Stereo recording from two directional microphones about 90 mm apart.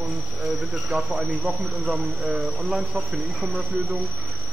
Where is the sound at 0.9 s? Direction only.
5° right (ahead or behind).